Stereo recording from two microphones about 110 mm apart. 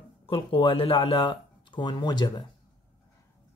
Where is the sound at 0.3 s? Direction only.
55° left (ahead or behind).